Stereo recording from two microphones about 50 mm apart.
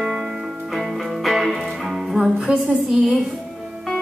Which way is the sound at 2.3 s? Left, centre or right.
Centre.